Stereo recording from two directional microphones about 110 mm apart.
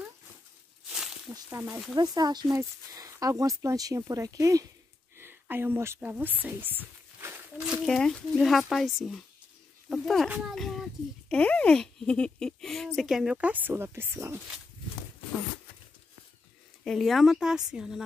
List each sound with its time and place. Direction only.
1.3 s speech: 20° right (ahead or behind)
2.0 s speech: 35° right (ahead or behind)
5.1 s speech: 20° right (ahead or behind)
7.8 s speech: 5° left (ahead or behind)
10.3 s a sound: centre (ahead or behind)
11.3 s speech: 10° left (ahead or behind); by 14.4 s 25° right (ahead or behind)
16.8 s speech: centre (ahead or behind)